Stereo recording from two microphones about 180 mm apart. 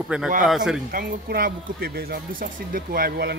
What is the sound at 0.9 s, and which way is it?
Speech, 55° right (ahead or behind).